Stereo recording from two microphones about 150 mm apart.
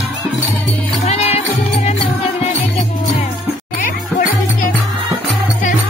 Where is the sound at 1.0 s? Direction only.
45° left (ahead or behind).